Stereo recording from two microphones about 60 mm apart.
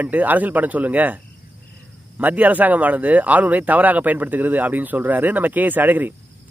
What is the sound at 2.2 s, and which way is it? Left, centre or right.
Speech, right.